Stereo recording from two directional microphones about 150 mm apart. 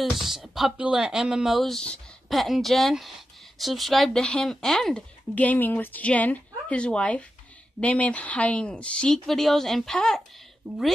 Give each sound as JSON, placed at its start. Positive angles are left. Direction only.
{"t": 0.0, "sound": "speech", "side_deg": 0}